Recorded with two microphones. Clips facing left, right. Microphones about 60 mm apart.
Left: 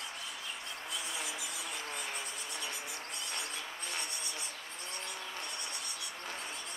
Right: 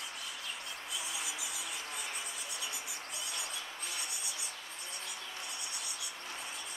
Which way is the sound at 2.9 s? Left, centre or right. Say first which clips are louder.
Left 1 dB; centre.